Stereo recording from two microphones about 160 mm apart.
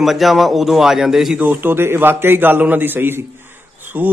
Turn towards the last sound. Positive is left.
turn(degrees=-10)  # may be behind; listen again after turning